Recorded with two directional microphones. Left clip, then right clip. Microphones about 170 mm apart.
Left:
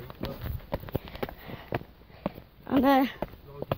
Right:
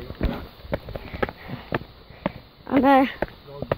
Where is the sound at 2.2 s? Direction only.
35° right (ahead or behind).